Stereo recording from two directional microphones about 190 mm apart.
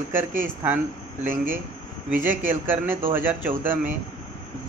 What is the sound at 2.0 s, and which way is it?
A man's voice, 10° right (ahead or behind).